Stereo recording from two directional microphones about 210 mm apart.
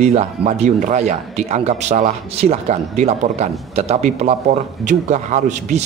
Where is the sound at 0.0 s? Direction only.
30° right (ahead or behind).